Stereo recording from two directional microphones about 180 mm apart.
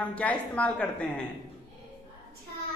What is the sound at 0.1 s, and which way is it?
Speech, 5° left (ahead or behind).